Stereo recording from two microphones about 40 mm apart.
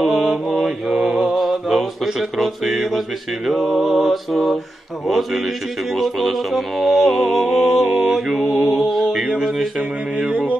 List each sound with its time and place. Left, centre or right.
0.0 s mantra: centre
1.0 s music: centre
9.8 s mantra: right